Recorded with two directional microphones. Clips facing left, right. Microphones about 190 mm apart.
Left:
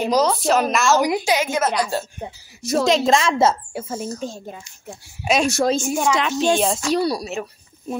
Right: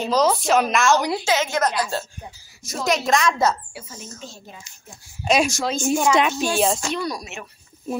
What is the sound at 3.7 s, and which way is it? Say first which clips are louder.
Speech: left 11 dB; 50° left (ahead or behind).